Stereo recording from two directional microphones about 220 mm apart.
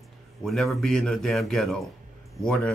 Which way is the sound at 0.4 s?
Centre (ahead or behind).